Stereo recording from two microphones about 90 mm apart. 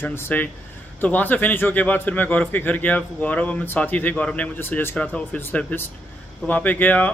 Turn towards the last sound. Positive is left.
turn(degrees=20)  # may be behind; listen again after turning